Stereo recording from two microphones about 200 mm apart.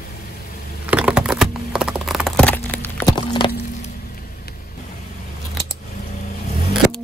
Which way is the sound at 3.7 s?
40° left (ahead or behind).